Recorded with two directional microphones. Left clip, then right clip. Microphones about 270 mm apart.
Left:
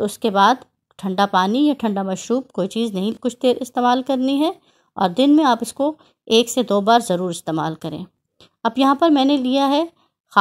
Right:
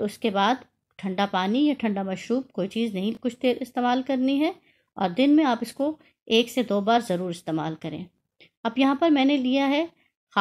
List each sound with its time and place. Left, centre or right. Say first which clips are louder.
0.3 s speech: left 9 dB; left